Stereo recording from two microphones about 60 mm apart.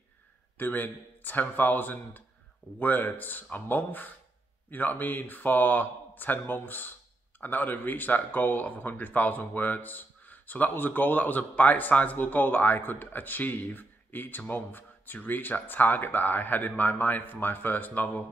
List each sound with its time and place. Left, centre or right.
0.6 s speech: left